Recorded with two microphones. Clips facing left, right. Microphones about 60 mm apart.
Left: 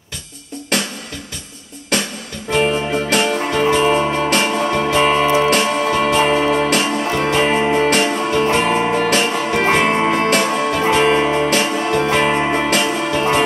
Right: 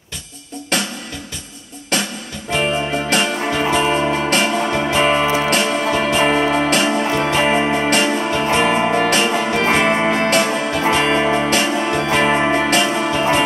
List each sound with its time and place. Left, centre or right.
2.5 s music: centre
10.3 s music: centre
11.5 s music: centre
12.1 s music: centre